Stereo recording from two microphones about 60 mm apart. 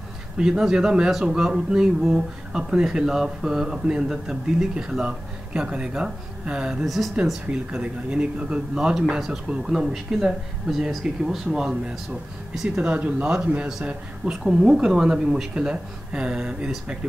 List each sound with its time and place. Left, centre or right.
0.4 s speech: centre